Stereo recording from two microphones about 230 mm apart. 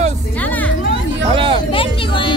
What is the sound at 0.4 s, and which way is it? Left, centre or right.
Music, centre.